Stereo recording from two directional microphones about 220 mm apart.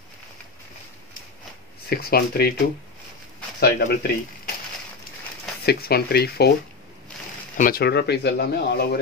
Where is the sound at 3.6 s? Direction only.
45° left (ahead or behind).